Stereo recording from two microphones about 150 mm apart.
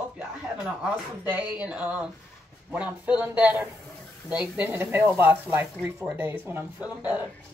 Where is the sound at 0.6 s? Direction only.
5° right (ahead or behind).